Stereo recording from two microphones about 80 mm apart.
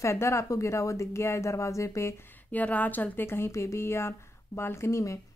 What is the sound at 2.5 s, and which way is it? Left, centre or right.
Speech, centre.